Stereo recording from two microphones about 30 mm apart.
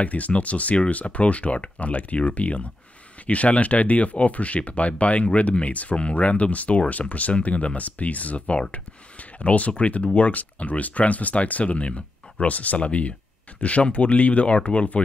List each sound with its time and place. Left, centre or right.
0.0 s speech: left
12.7 s speech: left